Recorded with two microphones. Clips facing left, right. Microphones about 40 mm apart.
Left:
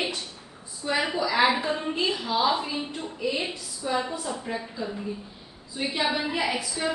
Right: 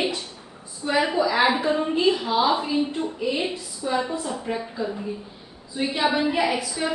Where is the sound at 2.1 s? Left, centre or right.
Right.